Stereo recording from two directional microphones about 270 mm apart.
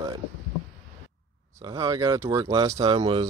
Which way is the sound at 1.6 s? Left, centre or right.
Centre.